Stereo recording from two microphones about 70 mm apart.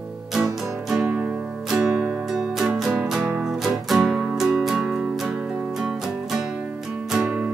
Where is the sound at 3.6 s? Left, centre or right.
Centre.